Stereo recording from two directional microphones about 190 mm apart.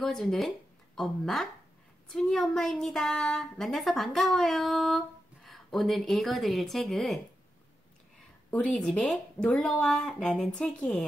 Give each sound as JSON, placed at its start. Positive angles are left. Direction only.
{"t": 0.0, "sound": "a woman's voice", "side_deg": 0}
{"t": 8.5, "sound": "a woman's voice", "side_deg": 5}